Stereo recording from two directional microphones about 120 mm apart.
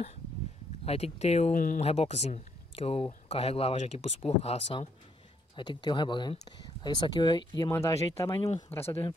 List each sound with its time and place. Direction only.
0.8 s speech: 60° left (ahead or behind); by 1.9 s 90° left
1.9 s speech: 65° left (ahead or behind)
5.6 s speech: 40° left (ahead or behind)
7.7 s speech: 25° left (ahead or behind)